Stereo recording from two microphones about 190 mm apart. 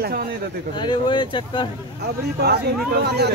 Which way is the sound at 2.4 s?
60° right (ahead or behind).